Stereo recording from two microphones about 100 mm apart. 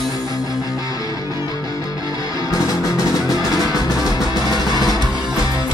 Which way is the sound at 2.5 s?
35° left (ahead or behind).